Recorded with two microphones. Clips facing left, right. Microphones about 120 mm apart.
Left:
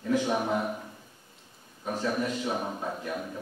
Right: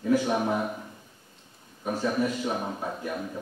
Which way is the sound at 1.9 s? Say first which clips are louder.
Right 3 dB; 5° right (ahead or behind).